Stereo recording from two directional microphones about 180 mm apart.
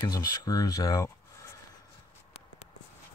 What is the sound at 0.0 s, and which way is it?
Speech, 20° left (ahead or behind).